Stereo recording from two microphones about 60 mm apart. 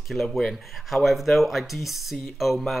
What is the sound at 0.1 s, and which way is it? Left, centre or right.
Speech, centre.